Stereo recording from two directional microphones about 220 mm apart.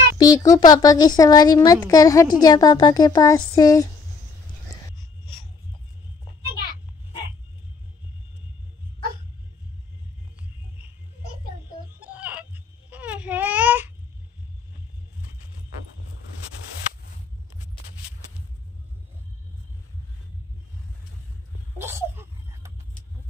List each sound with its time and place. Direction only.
0.2 s speech: 15° left (ahead or behind)
12.0 s baby cry: 5° right (ahead or behind)
21.7 s a sound: 10° right (ahead or behind)